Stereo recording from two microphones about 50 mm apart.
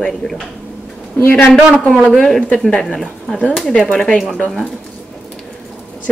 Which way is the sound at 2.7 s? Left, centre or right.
Centre.